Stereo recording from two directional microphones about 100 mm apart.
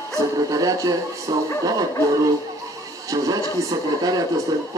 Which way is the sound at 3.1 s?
40° right (ahead or behind).